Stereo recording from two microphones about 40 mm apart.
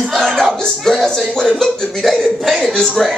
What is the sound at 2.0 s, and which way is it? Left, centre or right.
Speech, centre.